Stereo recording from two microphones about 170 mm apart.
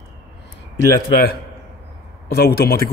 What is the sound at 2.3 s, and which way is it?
Speech, 65° left (ahead or behind).